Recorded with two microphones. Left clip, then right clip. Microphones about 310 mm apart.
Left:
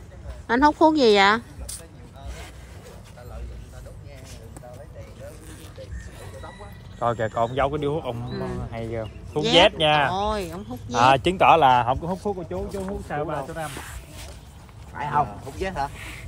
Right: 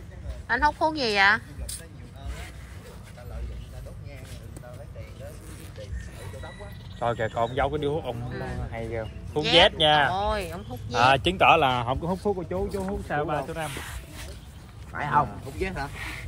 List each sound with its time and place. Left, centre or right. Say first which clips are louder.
0.5 s speech: left 6 dB; centre
7.0 s speech: left 3 dB; left
10.1 s speech: left 2 dB; centre
11.0 s speech: left 3 dB; left
12.1 s speech: even; centre
13.1 s speech: right 1 dB; centre
13.7 s speech: even; centre
15.0 s speech: even; centre
15.6 s speech: left 4 dB; centre
15.9 s speech: right 2 dB; centre